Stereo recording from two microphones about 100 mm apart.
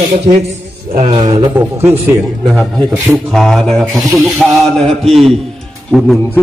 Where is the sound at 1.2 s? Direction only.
40° right (ahead or behind).